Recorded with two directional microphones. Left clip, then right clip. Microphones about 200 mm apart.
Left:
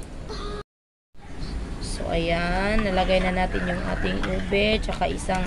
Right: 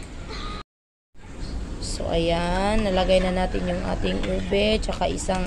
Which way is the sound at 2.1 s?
20° right (ahead or behind).